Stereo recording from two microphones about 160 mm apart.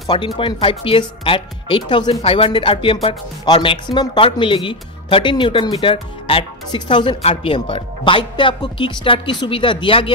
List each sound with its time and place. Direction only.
0.4 s speech: 30° left (ahead or behind)